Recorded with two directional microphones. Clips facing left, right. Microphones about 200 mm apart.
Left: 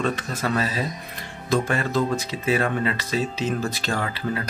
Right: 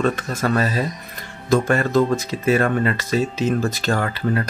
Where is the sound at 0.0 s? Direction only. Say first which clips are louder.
Right 4 dB; 45° right (ahead or behind).